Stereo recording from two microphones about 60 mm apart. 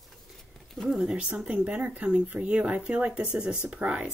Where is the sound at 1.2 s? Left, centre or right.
Right.